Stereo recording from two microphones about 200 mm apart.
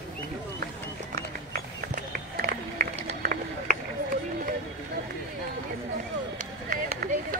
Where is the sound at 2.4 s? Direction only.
45° right (ahead or behind).